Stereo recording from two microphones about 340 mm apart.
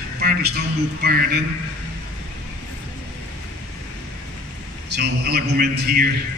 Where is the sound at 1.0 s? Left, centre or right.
Right.